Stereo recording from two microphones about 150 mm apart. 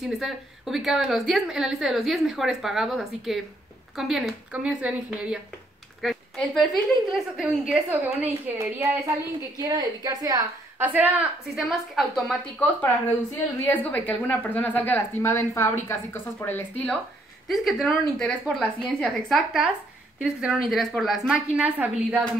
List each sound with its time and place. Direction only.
0.0 s a woman's voice: centre (ahead or behind)
5.9 s a sound: centre (ahead or behind)
7.1 s a woman's voice: centre (ahead or behind)
9.6 s a woman's voice: 25° right (ahead or behind)
10.9 s a woman's voice: 10° right (ahead or behind)
13.7 s speech: 10° left (ahead or behind)
17.5 s a woman's voice: centre (ahead or behind)